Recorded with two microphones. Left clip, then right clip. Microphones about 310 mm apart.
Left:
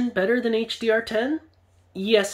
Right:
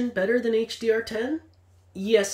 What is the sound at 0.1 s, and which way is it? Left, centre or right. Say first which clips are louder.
Speech: left 1 dB; centre.